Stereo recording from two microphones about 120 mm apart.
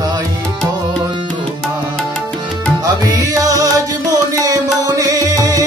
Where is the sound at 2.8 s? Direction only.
30° right (ahead or behind).